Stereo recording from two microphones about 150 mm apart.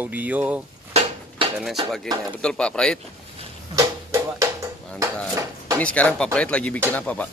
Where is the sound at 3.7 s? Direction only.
20° right (ahead or behind).